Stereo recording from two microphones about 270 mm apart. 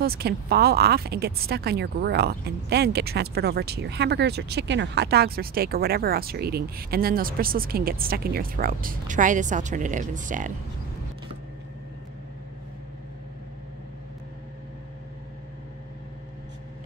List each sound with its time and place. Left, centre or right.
0.0 s speech: right